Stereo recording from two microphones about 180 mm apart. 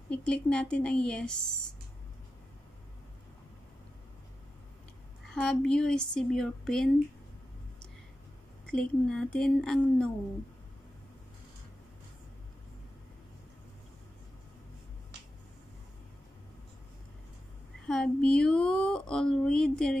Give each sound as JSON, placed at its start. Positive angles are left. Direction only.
{"t": 0.1, "sound": "speech", "side_deg": 5}
{"t": 5.3, "sound": "speech", "side_deg": 5}
{"t": 8.6, "sound": "speech", "side_deg": 5}
{"t": 17.8, "sound": "speech", "side_deg": 5}